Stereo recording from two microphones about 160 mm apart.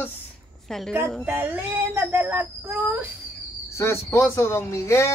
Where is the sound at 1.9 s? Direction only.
10° right (ahead or behind).